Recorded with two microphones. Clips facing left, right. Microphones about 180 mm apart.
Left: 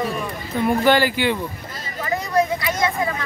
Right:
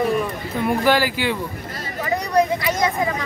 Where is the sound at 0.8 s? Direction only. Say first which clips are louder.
Left 2 dB; 5° right (ahead or behind).